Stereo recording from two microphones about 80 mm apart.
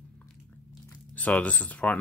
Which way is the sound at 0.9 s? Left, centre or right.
Centre.